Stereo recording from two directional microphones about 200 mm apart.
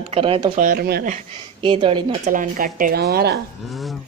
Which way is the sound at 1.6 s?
25° right (ahead or behind).